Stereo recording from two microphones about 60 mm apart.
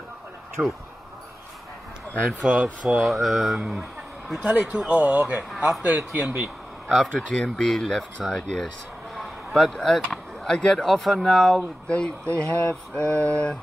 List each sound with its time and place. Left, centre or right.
0.6 s speech: centre
2.4 s speech: right
3.1 s speech: centre
4.3 s speech: centre
6.9 s speech: centre
11.9 s speech: centre